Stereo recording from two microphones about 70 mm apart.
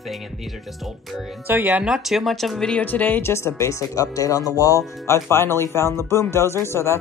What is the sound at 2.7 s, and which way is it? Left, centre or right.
Speech, left.